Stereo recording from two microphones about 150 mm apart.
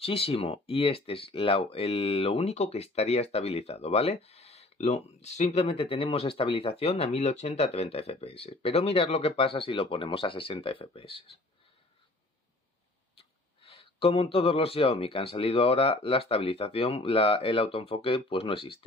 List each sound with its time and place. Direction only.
0.0 s speech: 40° left (ahead or behind)
13.7 s speech: 40° left (ahead or behind)